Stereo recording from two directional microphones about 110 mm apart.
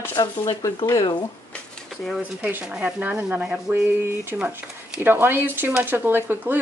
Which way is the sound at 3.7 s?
20° right (ahead or behind).